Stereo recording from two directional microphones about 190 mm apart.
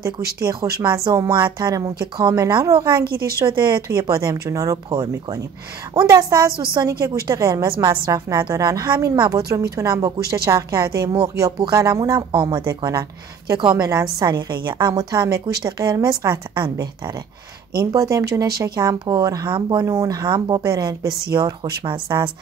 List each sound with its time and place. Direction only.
0.2 s speech: 55° right (ahead or behind)
0.8 s speech: 20° right (ahead or behind)
3.0 s speech: 55° right (ahead or behind)
3.3 s speech: 25° right (ahead or behind)
6.9 s speech: 55° right (ahead or behind)
7.2 s speech: 15° right (ahead or behind)